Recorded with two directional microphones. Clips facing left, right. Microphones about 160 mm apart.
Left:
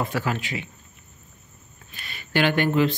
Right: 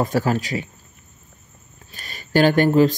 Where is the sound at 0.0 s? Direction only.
40° right (ahead or behind).